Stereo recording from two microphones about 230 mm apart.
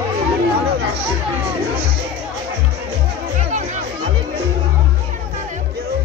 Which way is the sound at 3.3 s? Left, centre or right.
Right.